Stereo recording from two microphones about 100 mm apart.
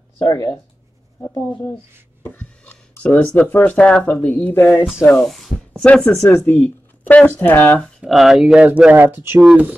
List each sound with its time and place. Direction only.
0.2 s speech: 40° left (ahead or behind)
2.2 s a sound: 15° left (ahead or behind)
3.3 s speech: 20° left (ahead or behind)
6.2 s speech: 30° left (ahead or behind)
6.5 s speech: 15° left (ahead or behind)
8.0 s speech: 5° right (ahead or behind)